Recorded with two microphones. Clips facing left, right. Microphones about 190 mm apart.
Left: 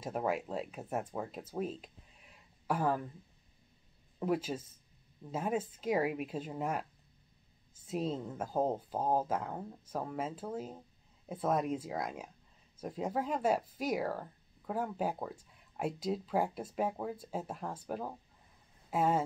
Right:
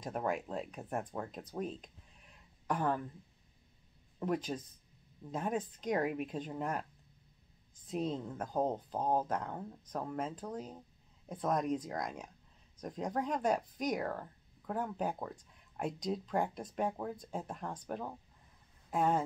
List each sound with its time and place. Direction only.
0.0 s speech: 5° left (ahead or behind)
4.2 s speech: 5° left (ahead or behind)